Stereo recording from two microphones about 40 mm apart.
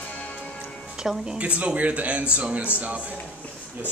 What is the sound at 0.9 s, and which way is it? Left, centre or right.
Music, centre.